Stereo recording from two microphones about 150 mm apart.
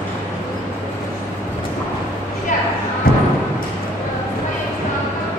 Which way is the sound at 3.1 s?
80° left.